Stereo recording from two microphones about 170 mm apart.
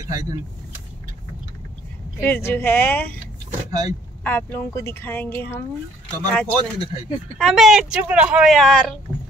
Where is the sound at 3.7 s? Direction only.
20° right (ahead or behind).